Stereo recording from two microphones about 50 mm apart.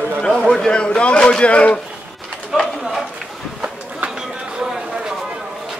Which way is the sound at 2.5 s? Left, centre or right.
Centre.